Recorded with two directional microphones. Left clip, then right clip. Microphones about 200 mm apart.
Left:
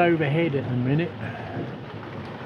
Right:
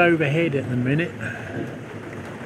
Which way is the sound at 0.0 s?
5° right (ahead or behind).